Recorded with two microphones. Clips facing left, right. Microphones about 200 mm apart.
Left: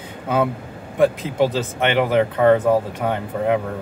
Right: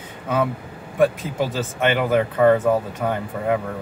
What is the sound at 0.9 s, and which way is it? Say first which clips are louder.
Speech: left 2 dB; 20° left (ahead or behind).